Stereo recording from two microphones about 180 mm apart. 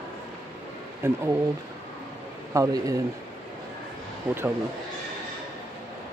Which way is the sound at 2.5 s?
20° right (ahead or behind).